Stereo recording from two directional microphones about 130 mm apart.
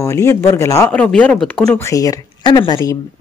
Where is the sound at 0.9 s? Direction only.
10° left (ahead or behind).